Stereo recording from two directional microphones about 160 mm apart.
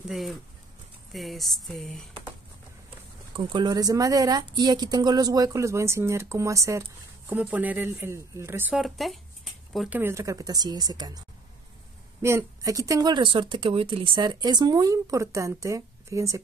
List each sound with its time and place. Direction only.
0.1 s speech: centre (ahead or behind)
1.1 s a sound: centre (ahead or behind)
3.3 s speech: 30° right (ahead or behind); by 9.9 s centre (ahead or behind)
9.9 s speech: 15° right (ahead or behind)